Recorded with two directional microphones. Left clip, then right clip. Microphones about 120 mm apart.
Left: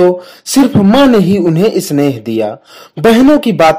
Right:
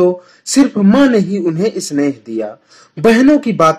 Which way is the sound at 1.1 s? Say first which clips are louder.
Left 5 dB; 45° left (ahead or behind).